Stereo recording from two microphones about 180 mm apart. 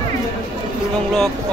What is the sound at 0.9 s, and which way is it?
Speech, 5° left (ahead or behind).